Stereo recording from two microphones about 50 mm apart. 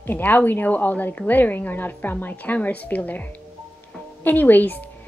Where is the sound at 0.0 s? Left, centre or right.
Left.